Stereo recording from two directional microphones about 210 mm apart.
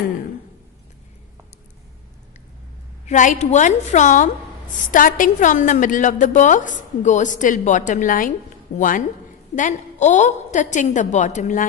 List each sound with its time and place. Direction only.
3.1 s a woman's voice: 35° left (ahead or behind)